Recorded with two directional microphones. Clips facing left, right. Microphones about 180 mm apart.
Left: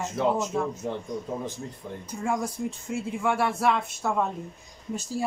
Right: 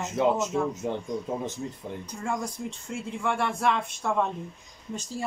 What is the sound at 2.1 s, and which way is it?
Speech, 10° left (ahead or behind).